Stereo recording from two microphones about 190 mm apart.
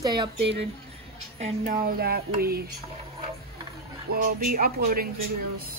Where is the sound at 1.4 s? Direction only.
50° right (ahead or behind).